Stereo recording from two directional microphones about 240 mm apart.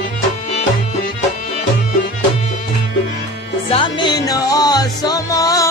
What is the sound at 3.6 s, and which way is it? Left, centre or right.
Music, left.